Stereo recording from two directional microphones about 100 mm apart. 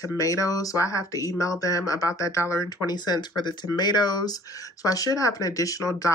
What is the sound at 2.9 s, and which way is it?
Speech, 45° left (ahead or behind).